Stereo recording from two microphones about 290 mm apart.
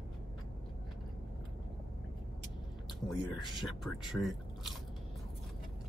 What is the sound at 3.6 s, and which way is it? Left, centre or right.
Speech, centre.